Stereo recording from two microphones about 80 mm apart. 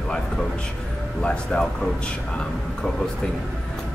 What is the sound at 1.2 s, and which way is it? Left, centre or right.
Speech, centre.